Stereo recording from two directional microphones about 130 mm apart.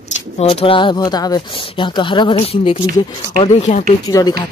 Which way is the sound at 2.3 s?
50° left (ahead or behind).